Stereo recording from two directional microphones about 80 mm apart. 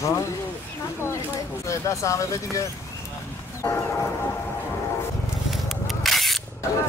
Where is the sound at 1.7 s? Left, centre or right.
Left.